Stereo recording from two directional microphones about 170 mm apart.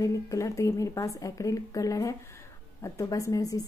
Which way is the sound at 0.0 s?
20° left (ahead or behind).